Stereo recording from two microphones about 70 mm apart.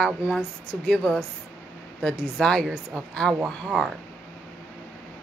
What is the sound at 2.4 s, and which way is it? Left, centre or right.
Speech, centre.